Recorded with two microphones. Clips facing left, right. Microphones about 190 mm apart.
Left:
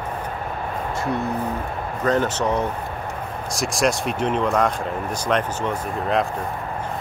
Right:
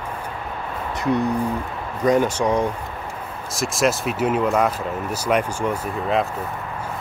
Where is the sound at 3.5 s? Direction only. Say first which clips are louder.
Right 1 dB; centre (ahead or behind).